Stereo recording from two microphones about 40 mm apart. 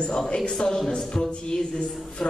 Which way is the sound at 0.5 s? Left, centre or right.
Centre.